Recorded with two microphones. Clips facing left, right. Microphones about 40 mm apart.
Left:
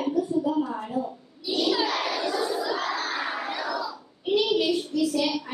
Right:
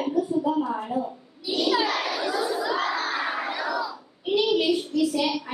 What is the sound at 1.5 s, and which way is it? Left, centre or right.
Crowd, centre.